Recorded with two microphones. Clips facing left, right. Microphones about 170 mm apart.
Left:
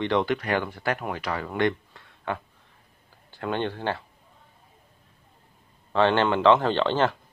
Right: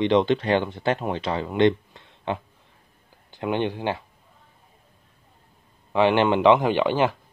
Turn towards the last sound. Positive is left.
turn(degrees=-10)  # may be behind; listen again after turning